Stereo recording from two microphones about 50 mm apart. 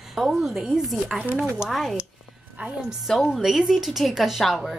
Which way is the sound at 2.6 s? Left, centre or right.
Right.